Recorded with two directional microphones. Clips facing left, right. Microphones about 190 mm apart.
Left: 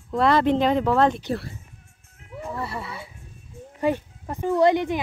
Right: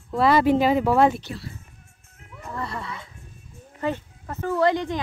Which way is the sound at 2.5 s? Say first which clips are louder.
Even; 5° left (ahead or behind).